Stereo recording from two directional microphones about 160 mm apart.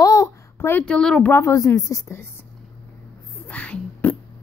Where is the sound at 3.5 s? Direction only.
10° left (ahead or behind).